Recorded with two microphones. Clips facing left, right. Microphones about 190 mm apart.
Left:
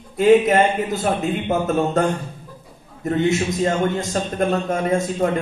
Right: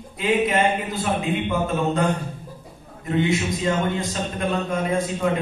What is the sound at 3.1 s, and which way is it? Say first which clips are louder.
Speech: left 3 dB; 45° left (ahead or behind).